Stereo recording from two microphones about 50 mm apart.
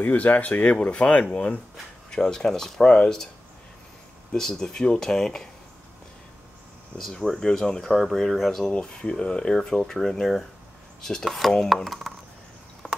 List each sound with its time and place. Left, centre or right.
0.0 s speech: left
2.0 s speech: centre
4.3 s speech: centre
7.0 s speech: centre
8.7 s speech: centre